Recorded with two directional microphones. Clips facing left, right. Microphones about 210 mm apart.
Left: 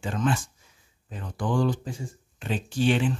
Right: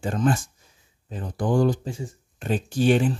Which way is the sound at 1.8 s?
25° right (ahead or behind).